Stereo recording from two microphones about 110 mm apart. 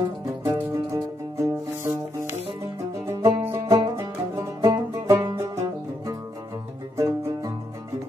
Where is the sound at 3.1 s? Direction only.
25° right (ahead or behind).